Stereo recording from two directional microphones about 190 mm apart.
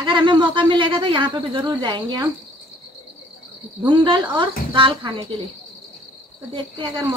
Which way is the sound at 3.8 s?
25° right (ahead or behind).